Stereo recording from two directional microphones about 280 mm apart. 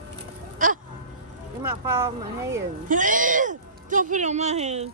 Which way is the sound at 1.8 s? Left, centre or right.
Centre.